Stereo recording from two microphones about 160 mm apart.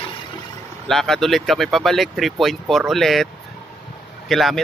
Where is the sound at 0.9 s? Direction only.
Centre (ahead or behind).